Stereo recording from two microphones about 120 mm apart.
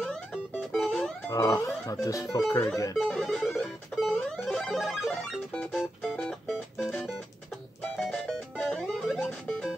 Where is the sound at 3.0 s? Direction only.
5° left (ahead or behind).